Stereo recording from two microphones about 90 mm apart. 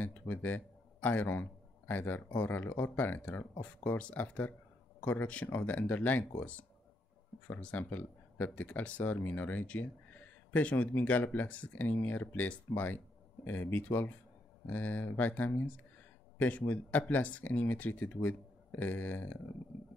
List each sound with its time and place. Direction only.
0.0 s speech: 20° left (ahead or behind)